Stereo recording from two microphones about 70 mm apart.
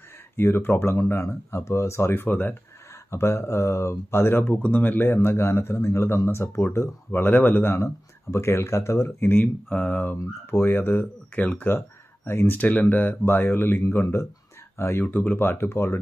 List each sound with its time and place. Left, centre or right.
0.4 s speech: left
3.1 s speech: left
12.5 s speech: left
15.0 s speech: left